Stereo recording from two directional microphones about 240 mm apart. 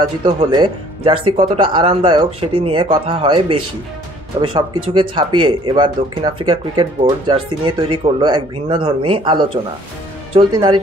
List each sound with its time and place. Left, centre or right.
0.0 s speech: centre